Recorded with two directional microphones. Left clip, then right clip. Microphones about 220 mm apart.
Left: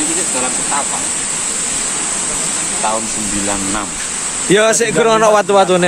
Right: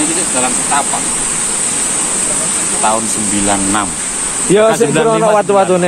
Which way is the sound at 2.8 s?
10° right (ahead or behind).